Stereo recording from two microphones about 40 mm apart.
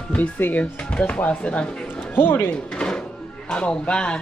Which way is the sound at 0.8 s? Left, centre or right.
Left.